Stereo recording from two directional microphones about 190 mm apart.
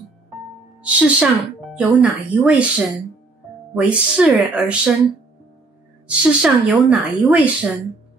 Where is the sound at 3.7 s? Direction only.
5° right (ahead or behind).